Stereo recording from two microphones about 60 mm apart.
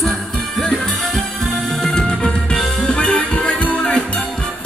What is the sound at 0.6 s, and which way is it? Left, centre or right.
Music, centre.